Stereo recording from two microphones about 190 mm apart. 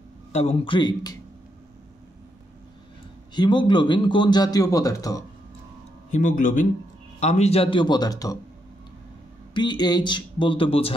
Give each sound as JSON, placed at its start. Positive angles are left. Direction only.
{"t": 0.3, "sound": "a man's voice", "side_deg": 35}
{"t": 3.3, "sound": "a man's voice", "side_deg": 25}
{"t": 6.1, "sound": "a man's voice", "side_deg": 45}
{"t": 9.5, "sound": "a man's voice", "side_deg": 25}